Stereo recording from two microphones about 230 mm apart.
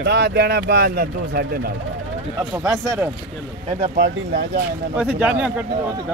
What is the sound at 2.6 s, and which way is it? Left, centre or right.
Speech, centre.